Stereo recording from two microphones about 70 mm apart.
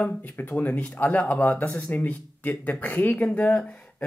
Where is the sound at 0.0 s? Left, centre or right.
Left.